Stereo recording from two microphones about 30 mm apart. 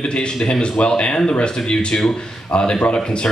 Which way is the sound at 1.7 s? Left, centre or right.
Centre.